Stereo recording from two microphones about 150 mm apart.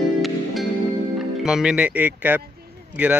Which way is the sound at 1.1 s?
5° right (ahead or behind).